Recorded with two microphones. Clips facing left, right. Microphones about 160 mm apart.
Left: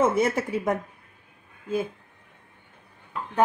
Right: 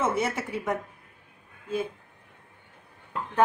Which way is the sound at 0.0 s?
45° left (ahead or behind).